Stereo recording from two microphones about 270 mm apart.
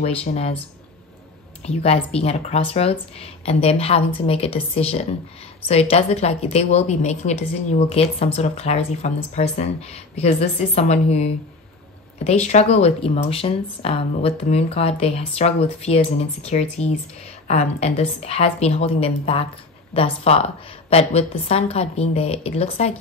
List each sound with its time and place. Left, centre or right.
0.0 s a woman's voice: left
1.6 s a woman's voice: left